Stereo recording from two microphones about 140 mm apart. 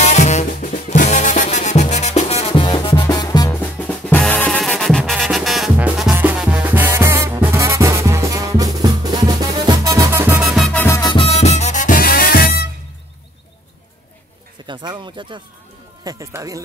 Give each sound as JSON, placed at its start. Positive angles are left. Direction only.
{"t": 0.0, "sound": "music", "side_deg": 55}
{"t": 0.5, "sound": "music", "side_deg": 70}
{"t": 3.1, "sound": "music", "side_deg": 25}
{"t": 3.8, "sound": "music", "side_deg": 10}
{"t": 10.7, "sound": "music", "side_deg": 15}
{"t": 11.0, "sound": "music", "side_deg": 35}
{"t": 14.7, "sound": "a sound", "side_deg": -35}
{"t": 16.0, "sound": "speech", "side_deg": -25}